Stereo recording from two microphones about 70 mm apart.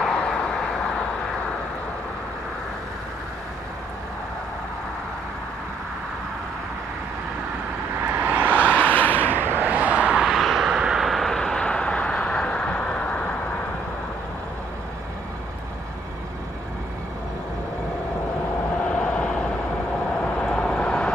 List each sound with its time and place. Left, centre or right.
0.0 s vehicle: centre
8.0 s vehicle: right
8.5 s vehicle: left
9.6 s vehicle: right; by 13.4 s centre
18.8 s vehicle: centre